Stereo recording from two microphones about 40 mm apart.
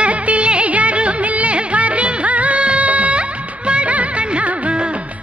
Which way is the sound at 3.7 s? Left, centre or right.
Right.